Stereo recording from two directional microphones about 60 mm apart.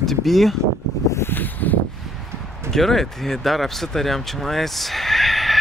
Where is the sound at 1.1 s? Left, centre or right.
Left.